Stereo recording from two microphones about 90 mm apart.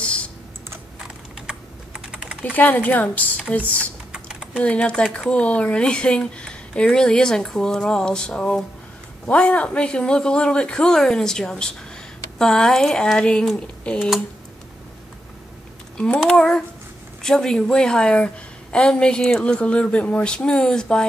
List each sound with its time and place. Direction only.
1.0 s typing: 10° right (ahead or behind)
2.5 s a woman's voice: 20° left (ahead or behind)
4.1 s typing: 10° right (ahead or behind)
4.6 s a woman's voice: 15° left (ahead or behind)
16.0 s a woman's voice: 10° left (ahead or behind)